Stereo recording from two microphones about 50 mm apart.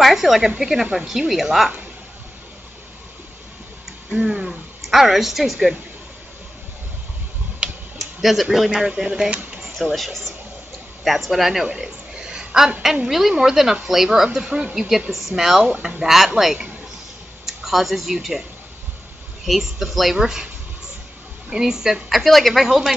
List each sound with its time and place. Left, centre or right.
0.0 s speech: centre
4.2 s speech: centre
4.5 s speech: centre
7.6 s a sound: right
8.0 s speech: centre
9.9 s speech: centre
11.7 s a sound: centre
13.3 s speech: centre
17.5 s speech: centre
19.4 s speech: centre
21.5 s speech: centre